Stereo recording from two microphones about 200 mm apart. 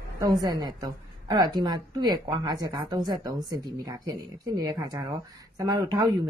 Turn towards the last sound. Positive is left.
turn(degrees=-20)  # may be behind; listen again after turning